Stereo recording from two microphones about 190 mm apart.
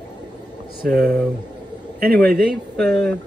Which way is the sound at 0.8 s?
50° right (ahead or behind).